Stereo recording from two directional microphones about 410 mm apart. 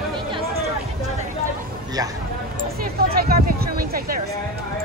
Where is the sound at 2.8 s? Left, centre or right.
Right.